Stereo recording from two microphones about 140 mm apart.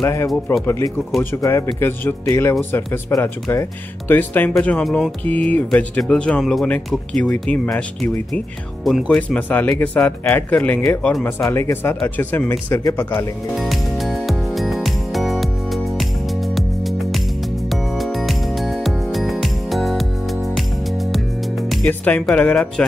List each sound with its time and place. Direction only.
0.0 s speech: 20° left (ahead or behind); by 9.2 s centre (ahead or behind)
9.3 s speech: 15° left (ahead or behind)
13.6 s music: centre (ahead or behind)
21.8 s speech: 10° left (ahead or behind)